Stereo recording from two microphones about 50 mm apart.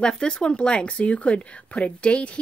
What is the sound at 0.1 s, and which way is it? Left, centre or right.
Speech, centre.